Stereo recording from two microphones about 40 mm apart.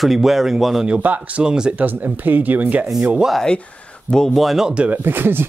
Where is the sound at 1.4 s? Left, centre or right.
Centre.